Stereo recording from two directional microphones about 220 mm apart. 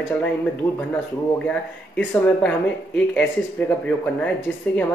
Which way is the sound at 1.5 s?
5° left (ahead or behind).